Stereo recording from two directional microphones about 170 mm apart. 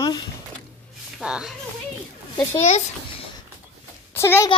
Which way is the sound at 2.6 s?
40° left (ahead or behind).